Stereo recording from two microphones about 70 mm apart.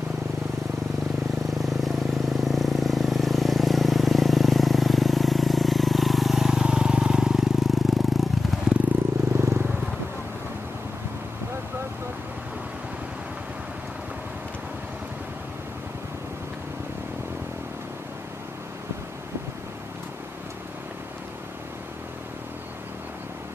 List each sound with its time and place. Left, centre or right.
1.4 s vehicle: centre
9.3 s vehicle: right